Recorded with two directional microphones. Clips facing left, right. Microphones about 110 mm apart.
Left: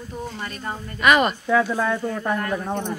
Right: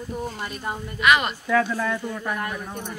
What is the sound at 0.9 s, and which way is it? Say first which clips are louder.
Speech: left 3 dB; 45° left (ahead or behind).